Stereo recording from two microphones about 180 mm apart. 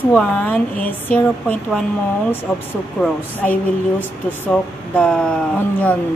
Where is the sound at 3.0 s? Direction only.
10° left (ahead or behind).